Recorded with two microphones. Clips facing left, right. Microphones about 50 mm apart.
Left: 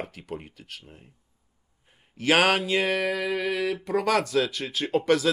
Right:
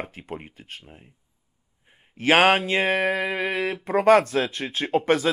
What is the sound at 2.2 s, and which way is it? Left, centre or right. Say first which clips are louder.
Speech: right 4 dB; right.